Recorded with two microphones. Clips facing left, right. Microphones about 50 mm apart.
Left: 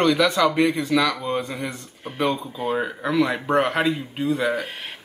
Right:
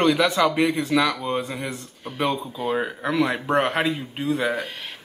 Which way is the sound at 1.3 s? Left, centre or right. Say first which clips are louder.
Left 1 dB; centre.